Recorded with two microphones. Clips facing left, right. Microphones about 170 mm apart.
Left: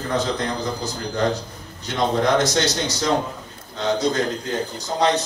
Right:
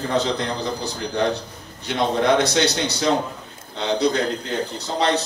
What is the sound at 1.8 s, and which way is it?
A man's voice, 65° right (ahead or behind).